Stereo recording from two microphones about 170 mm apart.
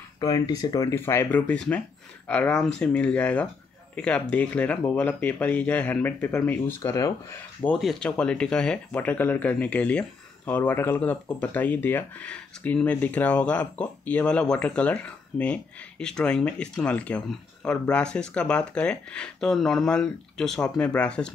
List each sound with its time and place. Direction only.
0.2 s speech: 20° left (ahead or behind)
7.6 s speech: 5° left (ahead or behind)